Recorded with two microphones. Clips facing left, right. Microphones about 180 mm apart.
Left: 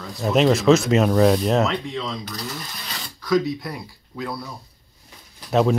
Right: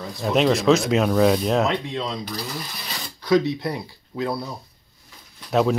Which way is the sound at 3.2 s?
25° right (ahead or behind).